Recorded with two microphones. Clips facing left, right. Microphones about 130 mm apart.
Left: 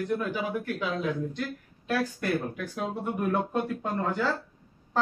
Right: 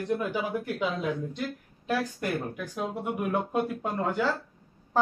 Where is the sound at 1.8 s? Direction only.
15° right (ahead or behind).